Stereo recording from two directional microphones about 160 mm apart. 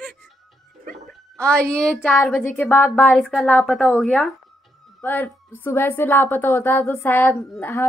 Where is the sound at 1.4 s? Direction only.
5° left (ahead or behind).